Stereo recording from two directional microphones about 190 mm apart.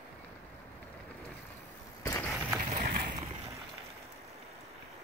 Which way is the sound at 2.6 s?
40° right (ahead or behind).